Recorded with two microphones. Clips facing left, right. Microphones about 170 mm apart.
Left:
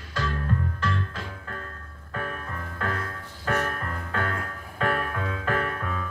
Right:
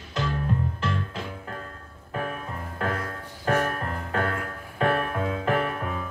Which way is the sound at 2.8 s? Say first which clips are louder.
Right 2 dB; 30° right (ahead or behind).